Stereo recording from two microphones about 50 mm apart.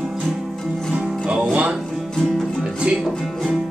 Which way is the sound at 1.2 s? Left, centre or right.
Right.